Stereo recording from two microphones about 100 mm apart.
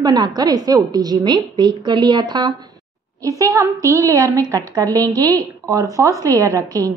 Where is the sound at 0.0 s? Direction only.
40° right (ahead or behind).